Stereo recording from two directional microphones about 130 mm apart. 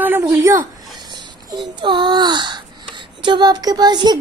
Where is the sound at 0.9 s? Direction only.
35° right (ahead or behind).